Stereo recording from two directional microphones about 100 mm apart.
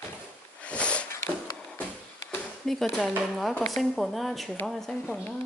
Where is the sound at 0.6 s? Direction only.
10° left (ahead or behind).